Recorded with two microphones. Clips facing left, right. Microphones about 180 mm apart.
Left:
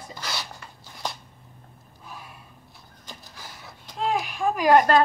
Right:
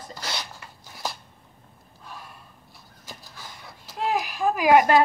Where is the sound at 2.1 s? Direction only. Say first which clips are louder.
Even; 5° left (ahead or behind).